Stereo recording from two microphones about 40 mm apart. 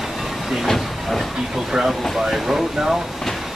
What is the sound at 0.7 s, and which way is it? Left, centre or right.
Hiss, centre.